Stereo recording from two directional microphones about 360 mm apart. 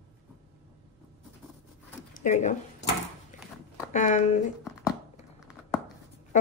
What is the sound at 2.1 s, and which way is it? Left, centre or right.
Speech, left.